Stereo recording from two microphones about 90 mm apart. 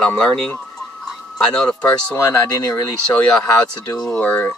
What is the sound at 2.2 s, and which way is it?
Speech, 25° left (ahead or behind).